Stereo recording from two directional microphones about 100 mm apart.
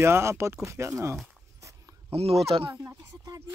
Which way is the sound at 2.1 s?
80° right.